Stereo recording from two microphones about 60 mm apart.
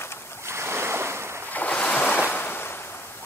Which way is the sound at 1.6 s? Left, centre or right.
Left.